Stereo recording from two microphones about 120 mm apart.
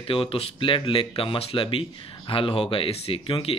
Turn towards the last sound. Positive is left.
turn(degrees=50)  # may be behind; listen again after turning